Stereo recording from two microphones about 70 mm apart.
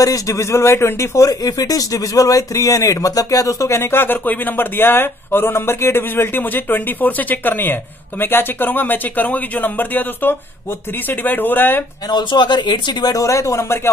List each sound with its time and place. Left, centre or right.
0.0 s speech: left
12.1 s speech: left
13.2 s speech: left